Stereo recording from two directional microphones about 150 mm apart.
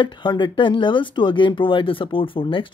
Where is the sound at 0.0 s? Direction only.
30° left (ahead or behind).